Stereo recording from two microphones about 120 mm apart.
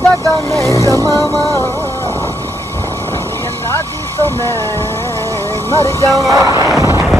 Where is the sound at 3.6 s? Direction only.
20° left (ahead or behind).